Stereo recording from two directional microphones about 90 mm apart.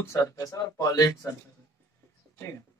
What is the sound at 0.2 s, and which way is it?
Speech, 45° left (ahead or behind).